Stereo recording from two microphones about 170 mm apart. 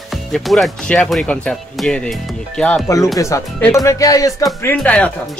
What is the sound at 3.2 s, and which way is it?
Speech, 20° left (ahead or behind).